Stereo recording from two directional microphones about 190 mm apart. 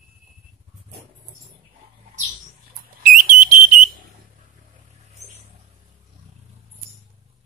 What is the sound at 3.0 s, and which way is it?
Alarm, 45° right (ahead or behind).